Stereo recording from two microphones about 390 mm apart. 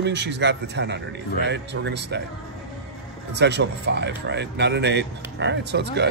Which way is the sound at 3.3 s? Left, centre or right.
Right.